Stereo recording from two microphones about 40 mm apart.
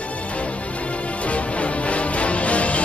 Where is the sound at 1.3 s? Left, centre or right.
Left.